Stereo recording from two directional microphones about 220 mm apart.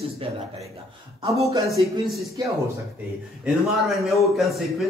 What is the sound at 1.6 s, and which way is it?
Speech, centre (ahead or behind).